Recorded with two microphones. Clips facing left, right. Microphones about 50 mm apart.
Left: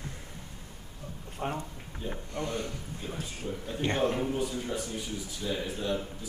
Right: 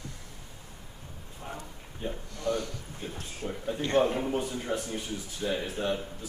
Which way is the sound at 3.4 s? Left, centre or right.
Right.